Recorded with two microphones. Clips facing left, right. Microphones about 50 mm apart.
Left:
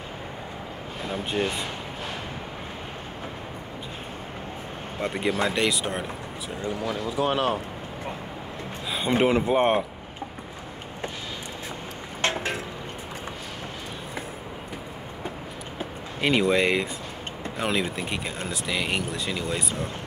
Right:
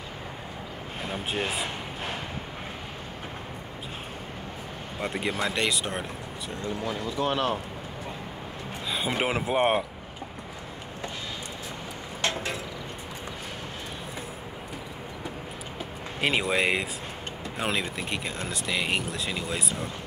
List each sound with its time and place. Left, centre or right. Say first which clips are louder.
1.4 s speech: left 4 dB; centre
5.0 s speech: left 3 dB; centre
7.2 s speech: left 3 dB; centre
8.9 s speech: left 6 dB; centre
12.2 s a sound: left 3 dB; left
16.2 s speech: left 4 dB; centre